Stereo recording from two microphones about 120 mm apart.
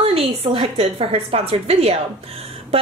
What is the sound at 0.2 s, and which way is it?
A woman's voice, 50° right (ahead or behind).